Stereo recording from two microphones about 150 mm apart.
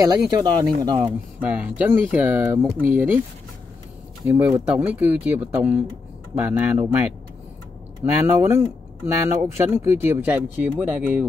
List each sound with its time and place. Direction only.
0.0 s speech: 25° right (ahead or behind)
1.0 s speech: 10° right (ahead or behind)
4.3 s speech: 10° right (ahead or behind)